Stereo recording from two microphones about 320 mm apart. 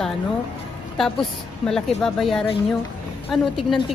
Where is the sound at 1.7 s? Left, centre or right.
Centre.